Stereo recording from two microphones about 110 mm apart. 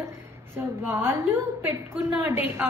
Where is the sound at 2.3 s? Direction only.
20° right (ahead or behind).